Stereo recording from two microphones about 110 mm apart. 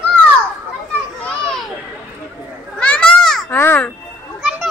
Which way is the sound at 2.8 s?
10° left (ahead or behind).